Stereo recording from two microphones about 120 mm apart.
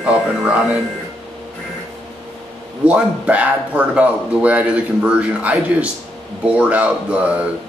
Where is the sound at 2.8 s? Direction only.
10° right (ahead or behind).